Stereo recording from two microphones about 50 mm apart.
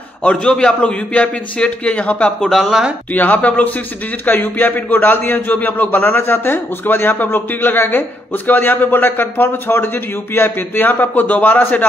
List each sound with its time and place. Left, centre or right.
0.2 s a man's voice: left
0.7 s a man's voice: left
2.5 s speech: centre
3.1 s a man's voice: left